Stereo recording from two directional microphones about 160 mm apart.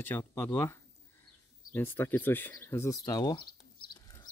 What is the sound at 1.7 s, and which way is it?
Speech, 15° left (ahead or behind).